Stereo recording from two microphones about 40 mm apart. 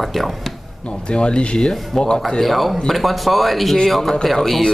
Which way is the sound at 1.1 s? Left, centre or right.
Left.